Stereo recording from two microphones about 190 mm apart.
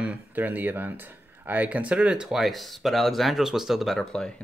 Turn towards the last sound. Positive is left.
turn(degrees=5)  # may be behind; listen again after turning